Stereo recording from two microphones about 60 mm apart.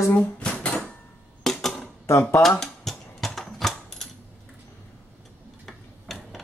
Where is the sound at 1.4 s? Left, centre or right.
Centre.